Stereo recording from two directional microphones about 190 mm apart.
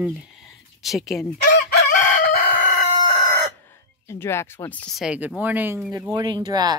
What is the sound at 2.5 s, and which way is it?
Crowing, 40° left (ahead or behind).